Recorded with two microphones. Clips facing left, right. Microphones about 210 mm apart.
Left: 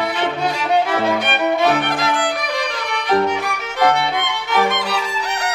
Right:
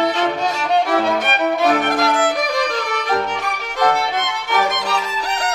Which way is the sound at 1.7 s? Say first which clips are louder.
Right 2 dB; 45° right (ahead or behind).